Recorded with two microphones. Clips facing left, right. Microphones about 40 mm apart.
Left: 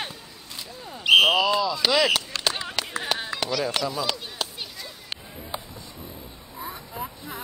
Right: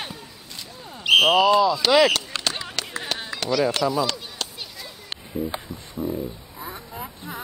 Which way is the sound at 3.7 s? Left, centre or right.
Centre.